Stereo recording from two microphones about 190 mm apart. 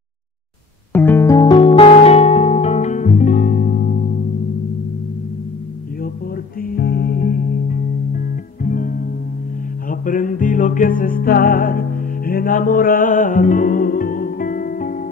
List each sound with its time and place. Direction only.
0.9 s music: 10° left (ahead or behind); by 4.3 s 50° left (ahead or behind)
6.7 s music: 55° left (ahead or behind)